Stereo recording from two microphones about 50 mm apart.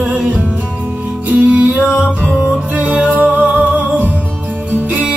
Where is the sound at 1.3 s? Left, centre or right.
Right.